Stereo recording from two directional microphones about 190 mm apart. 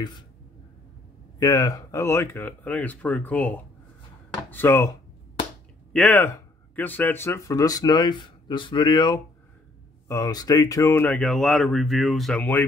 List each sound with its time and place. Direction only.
1.4 s speech: 20° left (ahead or behind)
5.9 s speech: 5° left (ahead or behind)